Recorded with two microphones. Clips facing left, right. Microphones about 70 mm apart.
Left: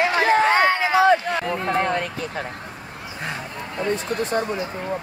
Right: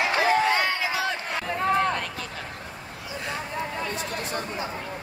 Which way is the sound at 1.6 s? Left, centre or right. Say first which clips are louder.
Right 2 dB; left.